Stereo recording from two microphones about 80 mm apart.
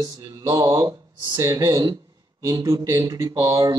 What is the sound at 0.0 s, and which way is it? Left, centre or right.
Speech, right.